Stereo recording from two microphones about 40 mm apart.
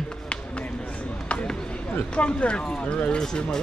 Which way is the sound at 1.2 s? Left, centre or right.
Left.